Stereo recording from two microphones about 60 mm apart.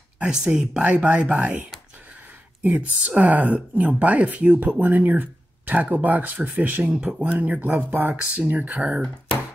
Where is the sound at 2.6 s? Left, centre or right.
Right.